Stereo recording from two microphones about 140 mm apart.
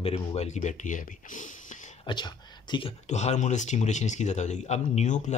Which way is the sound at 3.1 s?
55° left (ahead or behind).